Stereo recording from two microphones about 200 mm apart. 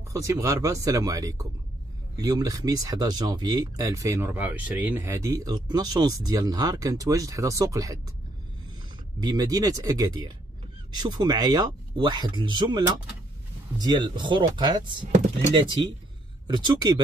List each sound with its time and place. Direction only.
0.1 s speech: 15° right (ahead or behind)
9.2 s speech: 20° right (ahead or behind)